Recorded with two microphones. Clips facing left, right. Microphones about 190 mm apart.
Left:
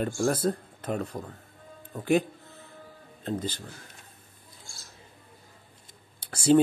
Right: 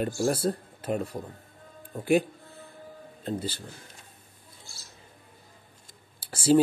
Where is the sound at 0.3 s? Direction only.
10° right (ahead or behind).